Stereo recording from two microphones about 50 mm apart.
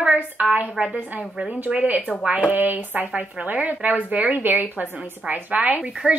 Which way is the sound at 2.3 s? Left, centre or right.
Right.